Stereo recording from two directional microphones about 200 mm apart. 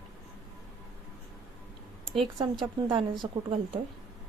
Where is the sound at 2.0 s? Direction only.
Centre (ahead or behind).